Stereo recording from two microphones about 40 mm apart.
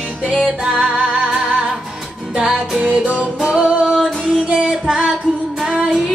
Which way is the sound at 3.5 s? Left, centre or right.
Right.